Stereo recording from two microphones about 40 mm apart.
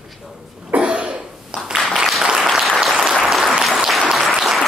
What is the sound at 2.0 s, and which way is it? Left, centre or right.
Applause, centre.